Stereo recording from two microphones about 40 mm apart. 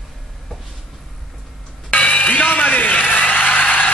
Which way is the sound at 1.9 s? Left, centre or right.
Left.